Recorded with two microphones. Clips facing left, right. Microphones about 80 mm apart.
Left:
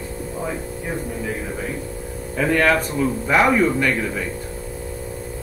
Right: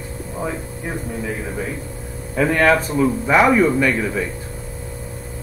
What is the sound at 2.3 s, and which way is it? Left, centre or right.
A man's voice, centre.